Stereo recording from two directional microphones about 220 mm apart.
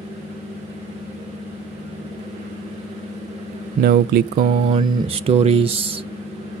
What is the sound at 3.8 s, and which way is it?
Speech, 45° right (ahead or behind).